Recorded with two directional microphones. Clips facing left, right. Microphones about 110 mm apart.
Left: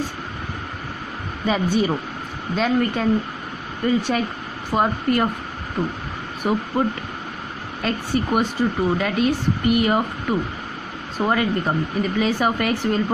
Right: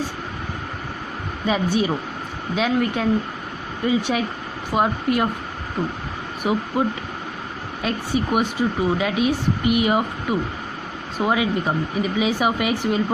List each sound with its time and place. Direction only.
1.4 s speech: centre (ahead or behind)
6.4 s speech: 5° right (ahead or behind)
7.8 s speech: 5° right (ahead or behind)